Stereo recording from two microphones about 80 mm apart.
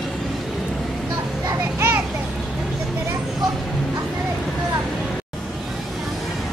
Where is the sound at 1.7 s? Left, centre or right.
Right.